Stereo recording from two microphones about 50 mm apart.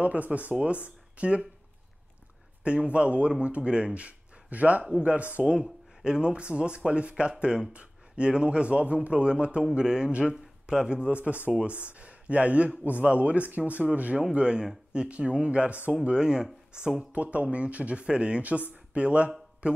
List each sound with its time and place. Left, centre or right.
0.0 s speech: right
2.6 s speech: right
5.5 s a man's voice: centre
11.2 s speech: right
14.3 s a man's voice: centre
17.1 s speech: right